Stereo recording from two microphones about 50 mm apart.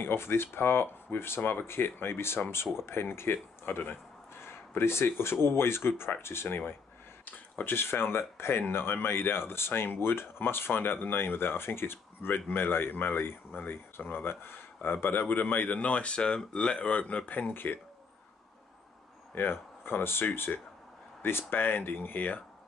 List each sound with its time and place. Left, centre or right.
0.0 s speech: left
17.3 s speech: left
19.5 s speech: left